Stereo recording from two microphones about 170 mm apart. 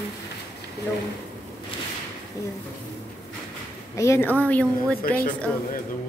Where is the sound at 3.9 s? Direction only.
15° left (ahead or behind).